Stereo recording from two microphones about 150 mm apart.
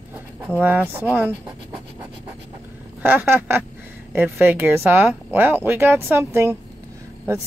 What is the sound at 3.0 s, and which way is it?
Speech, 15° right (ahead or behind).